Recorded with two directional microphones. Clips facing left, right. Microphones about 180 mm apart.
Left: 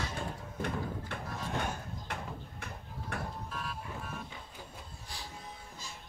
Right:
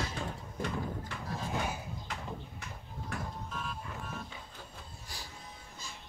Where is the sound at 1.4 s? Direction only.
5° right (ahead or behind).